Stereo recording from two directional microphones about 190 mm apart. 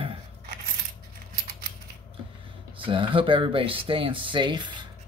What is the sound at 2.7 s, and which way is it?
Speech, 25° right (ahead or behind).